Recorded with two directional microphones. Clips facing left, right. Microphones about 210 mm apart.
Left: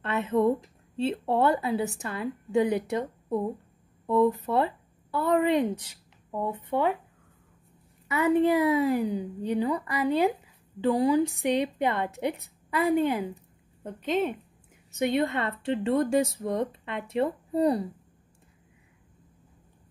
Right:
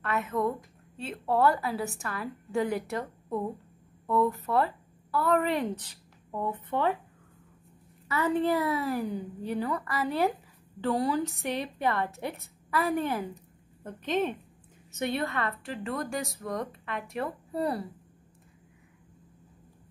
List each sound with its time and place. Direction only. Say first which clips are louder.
0.0 s a woman's voice: left 5 dB; 25° left (ahead or behind)
8.1 s a woman's voice: left 4 dB; 15° left (ahead or behind)